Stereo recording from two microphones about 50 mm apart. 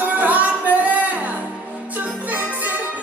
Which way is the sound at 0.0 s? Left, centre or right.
Right.